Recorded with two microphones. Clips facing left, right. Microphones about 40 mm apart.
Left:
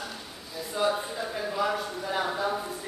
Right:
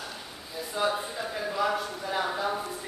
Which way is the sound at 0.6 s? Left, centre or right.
Centre.